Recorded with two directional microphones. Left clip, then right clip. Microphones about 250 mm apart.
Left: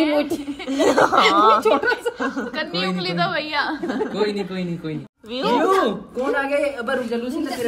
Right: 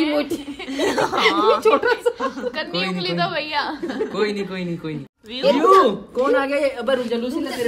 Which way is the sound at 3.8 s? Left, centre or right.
Centre.